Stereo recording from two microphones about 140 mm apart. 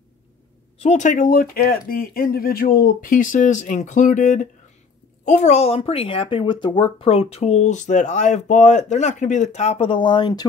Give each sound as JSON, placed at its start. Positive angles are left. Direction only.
{"t": 0.7, "sound": "speech", "side_deg": 55}